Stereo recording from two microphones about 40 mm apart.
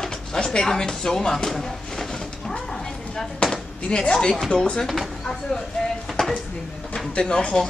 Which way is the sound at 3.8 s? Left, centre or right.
Left.